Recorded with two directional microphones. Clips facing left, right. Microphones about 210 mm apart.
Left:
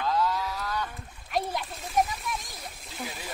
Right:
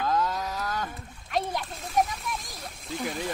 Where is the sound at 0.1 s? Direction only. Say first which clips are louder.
Even; 45° right (ahead or behind).